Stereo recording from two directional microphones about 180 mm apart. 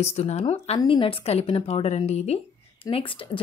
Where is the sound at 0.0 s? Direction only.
35° left (ahead or behind).